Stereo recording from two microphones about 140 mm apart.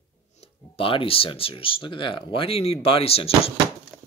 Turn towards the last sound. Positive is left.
turn(degrees=45)  # may be behind; listen again after turning